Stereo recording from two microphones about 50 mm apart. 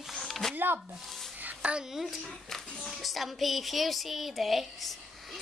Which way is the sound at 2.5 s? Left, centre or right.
Centre.